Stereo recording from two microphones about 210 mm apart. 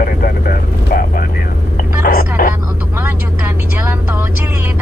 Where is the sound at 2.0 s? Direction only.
40° left (ahead or behind).